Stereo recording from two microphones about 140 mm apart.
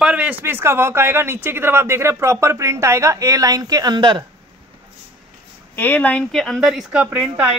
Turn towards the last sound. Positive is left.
turn(degrees=-10)  # may be behind; listen again after turning